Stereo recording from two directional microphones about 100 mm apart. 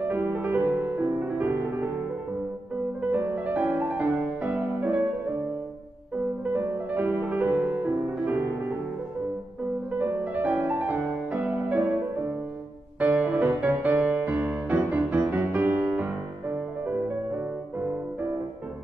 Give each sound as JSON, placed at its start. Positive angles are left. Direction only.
{"t": 0.0, "sound": "music", "side_deg": -15}
{"t": 3.0, "sound": "music", "side_deg": -15}
{"t": 6.4, "sound": "music", "side_deg": -20}
{"t": 9.9, "sound": "music", "side_deg": -15}
{"t": 13.0, "sound": "music", "side_deg": -15}